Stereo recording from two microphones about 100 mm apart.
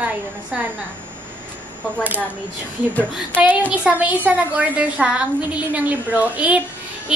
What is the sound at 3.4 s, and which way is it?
A woman's voice, 15° right (ahead or behind).